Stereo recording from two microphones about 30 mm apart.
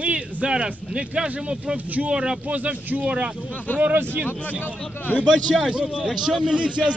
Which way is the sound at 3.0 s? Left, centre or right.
Right.